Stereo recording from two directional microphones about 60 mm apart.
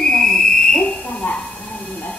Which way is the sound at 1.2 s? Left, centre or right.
Left.